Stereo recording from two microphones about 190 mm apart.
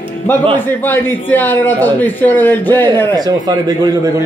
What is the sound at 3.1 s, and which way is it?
Speech, 20° right (ahead or behind).